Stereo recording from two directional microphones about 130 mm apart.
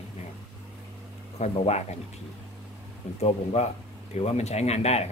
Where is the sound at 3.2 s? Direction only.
50° left (ahead or behind).